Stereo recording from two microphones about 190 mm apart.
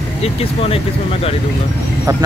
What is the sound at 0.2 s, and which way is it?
Speech, 30° left (ahead or behind).